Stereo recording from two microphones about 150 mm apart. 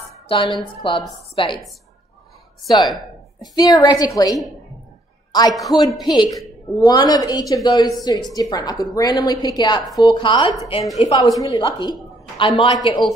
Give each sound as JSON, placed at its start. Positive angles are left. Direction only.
{"t": 0.3, "sound": "a woman's voice", "side_deg": 35}
{"t": 2.7, "sound": "a woman's voice", "side_deg": 25}
{"t": 5.5, "sound": "a man's voice", "side_deg": 0}
{"t": 5.9, "sound": "a woman's voice", "side_deg": 25}